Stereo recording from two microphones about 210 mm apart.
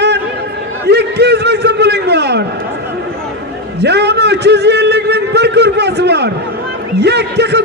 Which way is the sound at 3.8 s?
55° right (ahead or behind).